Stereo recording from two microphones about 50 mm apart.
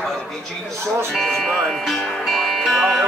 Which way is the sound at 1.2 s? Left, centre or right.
Centre.